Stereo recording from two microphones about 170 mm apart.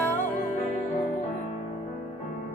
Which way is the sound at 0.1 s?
50° left (ahead or behind).